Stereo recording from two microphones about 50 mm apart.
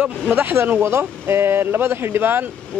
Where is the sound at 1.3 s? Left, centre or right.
Right.